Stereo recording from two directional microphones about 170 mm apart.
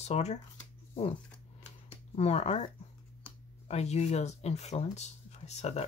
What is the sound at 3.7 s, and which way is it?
Speech, 40° left (ahead or behind).